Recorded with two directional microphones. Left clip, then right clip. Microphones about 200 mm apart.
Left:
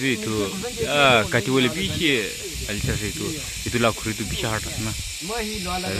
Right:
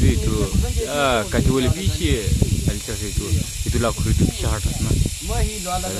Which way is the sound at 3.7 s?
Centre (ahead or behind).